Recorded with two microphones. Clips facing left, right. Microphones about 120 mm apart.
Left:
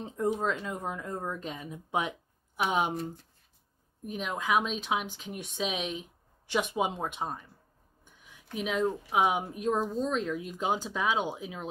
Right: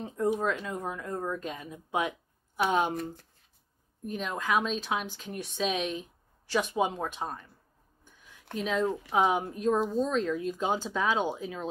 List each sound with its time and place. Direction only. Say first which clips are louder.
0.5 s speech: right 1 dB; 20° left (ahead or behind)
4.0 s speech: right 1 dB; 10° left (ahead or behind)
8.5 s speech: right 1 dB; 10° left (ahead or behind)